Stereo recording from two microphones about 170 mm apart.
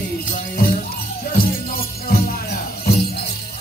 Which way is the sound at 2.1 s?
70° left (ahead or behind).